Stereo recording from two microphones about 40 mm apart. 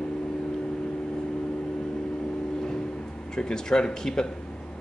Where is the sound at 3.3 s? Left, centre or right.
Centre.